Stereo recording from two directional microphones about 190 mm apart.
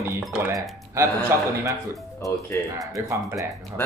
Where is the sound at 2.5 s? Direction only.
10° left (ahead or behind).